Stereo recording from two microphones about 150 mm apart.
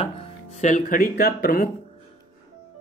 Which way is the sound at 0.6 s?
55° left (ahead or behind).